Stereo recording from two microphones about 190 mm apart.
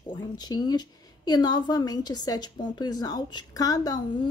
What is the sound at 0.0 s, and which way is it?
A woman's voice, 20° left (ahead or behind).